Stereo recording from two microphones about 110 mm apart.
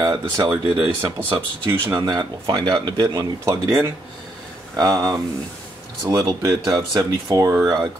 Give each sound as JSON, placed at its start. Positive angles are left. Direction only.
{"t": 0.0, "sound": "speech", "side_deg": -35}
{"t": 1.3, "sound": "speech", "side_deg": -20}
{"t": 2.0, "sound": "speech", "side_deg": -35}